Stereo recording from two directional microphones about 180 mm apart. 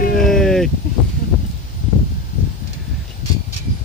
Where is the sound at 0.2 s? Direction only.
Centre (ahead or behind).